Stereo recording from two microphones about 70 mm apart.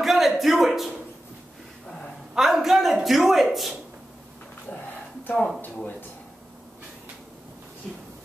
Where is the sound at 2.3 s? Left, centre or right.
Centre.